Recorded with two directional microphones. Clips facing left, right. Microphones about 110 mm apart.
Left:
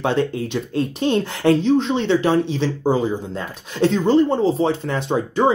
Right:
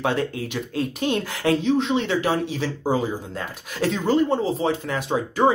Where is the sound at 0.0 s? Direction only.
25° left (ahead or behind).